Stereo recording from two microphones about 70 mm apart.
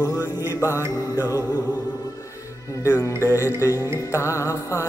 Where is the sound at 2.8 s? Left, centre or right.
Left.